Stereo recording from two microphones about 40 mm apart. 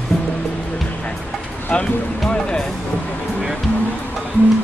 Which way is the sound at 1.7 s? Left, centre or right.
Left.